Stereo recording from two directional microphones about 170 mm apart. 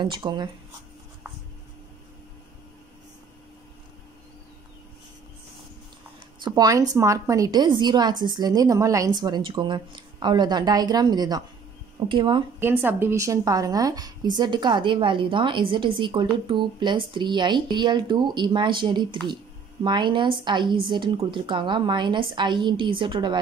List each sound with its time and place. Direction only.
0.0 s a woman's voice: 25° right (ahead or behind)
6.4 s a woman's voice: 20° right (ahead or behind)
12.5 s a woman's voice: 15° right (ahead or behind)